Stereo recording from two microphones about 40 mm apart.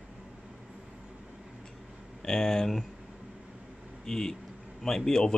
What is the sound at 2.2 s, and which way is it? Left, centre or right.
Speech, centre.